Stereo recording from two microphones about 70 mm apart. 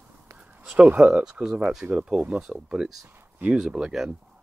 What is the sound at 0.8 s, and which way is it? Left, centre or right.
Speech, centre.